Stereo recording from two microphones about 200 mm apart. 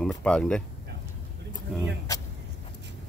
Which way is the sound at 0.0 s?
5° left (ahead or behind).